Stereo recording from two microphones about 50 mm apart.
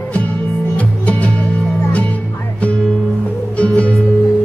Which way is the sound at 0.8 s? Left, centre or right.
Left.